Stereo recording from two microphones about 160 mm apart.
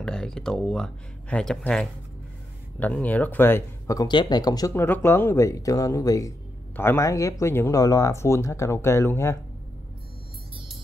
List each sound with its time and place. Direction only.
0.0 s speech: 5° left (ahead or behind)